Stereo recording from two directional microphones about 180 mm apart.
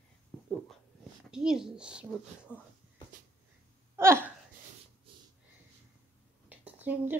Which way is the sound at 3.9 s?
15° right (ahead or behind).